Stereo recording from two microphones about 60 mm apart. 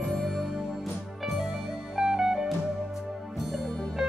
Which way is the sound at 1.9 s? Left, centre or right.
Centre.